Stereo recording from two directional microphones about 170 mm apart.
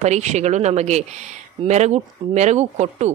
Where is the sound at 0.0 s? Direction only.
40° right (ahead or behind).